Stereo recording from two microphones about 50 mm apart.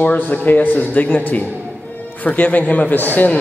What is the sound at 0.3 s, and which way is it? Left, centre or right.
A man's voice, left.